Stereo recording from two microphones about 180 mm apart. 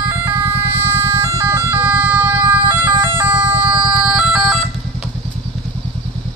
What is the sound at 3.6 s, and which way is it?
Vehicle, 5° right (ahead or behind).